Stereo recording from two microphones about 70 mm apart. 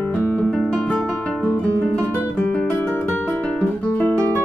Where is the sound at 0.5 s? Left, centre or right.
Centre.